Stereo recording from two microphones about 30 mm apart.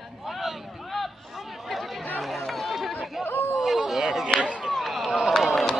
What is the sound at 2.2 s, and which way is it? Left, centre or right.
Chatter, centre.